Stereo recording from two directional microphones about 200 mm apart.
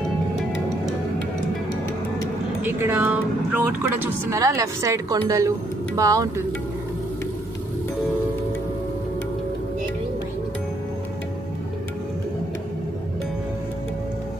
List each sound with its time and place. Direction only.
2.6 s speech: 10° right (ahead or behind)